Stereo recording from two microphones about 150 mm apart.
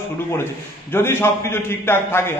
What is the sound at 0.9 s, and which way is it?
Speech, 15° left (ahead or behind).